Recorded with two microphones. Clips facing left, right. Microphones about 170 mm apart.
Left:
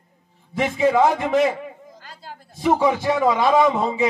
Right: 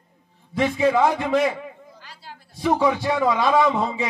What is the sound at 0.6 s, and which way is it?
Speech, 20° left (ahead or behind).